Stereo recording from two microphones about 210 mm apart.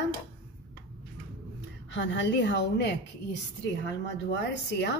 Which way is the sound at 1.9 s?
60° left (ahead or behind).